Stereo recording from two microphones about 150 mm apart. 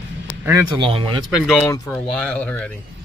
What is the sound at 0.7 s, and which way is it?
Speech, 35° right (ahead or behind).